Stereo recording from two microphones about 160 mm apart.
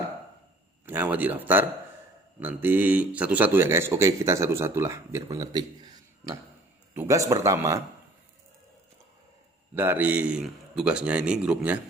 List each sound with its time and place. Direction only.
0.8 s speech: 15° right (ahead or behind)
9.8 s speech: 10° right (ahead or behind)